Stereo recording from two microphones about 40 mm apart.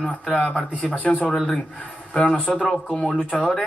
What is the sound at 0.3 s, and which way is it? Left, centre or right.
Speech, centre.